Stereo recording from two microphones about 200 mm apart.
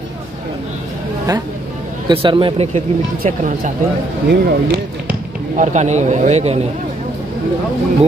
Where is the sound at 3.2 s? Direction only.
40° right (ahead or behind).